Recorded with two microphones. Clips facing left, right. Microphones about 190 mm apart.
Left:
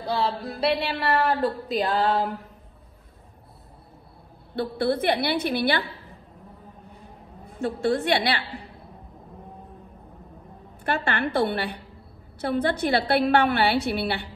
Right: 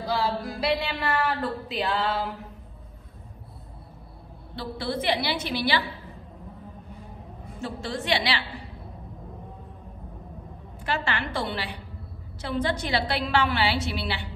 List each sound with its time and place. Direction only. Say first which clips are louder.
0.0 s a woman's voice: left 1 dB; 30° left (ahead or behind)
4.6 s a woman's voice: left 6 dB; 55° left (ahead or behind)
7.6 s a woman's voice: left 8 dB; 55° left (ahead or behind)
10.8 s a woman's voice: left 3 dB; 55° left (ahead or behind)